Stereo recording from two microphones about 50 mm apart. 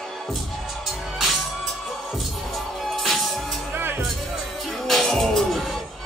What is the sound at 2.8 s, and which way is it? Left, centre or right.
Music, centre.